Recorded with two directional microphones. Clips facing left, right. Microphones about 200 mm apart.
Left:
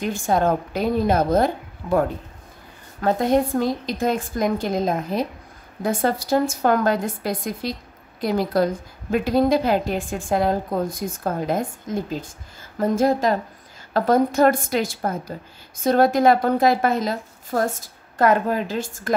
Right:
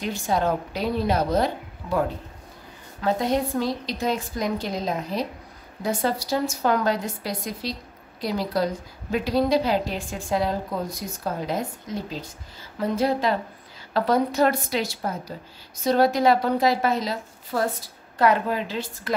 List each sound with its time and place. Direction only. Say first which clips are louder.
0.0 s a woman's voice: left 4 dB; 50° left (ahead or behind)